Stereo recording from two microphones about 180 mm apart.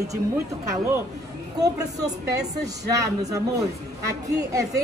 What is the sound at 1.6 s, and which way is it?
Speech, 20° right (ahead or behind).